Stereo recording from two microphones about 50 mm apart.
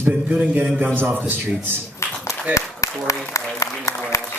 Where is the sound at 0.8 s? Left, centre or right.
Right.